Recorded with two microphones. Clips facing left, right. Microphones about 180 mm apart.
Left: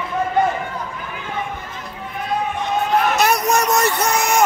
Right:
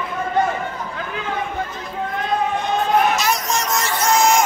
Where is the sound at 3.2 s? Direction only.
60° left (ahead or behind).